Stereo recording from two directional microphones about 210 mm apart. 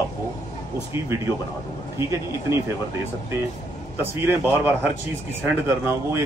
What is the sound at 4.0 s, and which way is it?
A man's voice, 10° right (ahead or behind).